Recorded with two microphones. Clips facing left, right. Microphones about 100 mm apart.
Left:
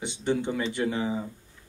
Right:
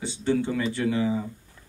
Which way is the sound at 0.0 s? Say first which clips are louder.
Right 2 dB; 20° left (ahead or behind).